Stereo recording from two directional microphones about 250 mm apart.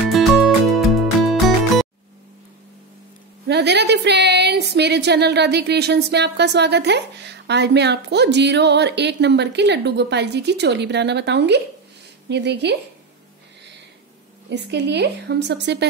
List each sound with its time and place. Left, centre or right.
0.1 s music: centre
3.4 s speech: right
14.5 s speech: right